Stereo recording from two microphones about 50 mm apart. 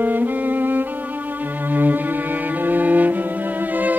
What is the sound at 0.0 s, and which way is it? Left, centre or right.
Music, right.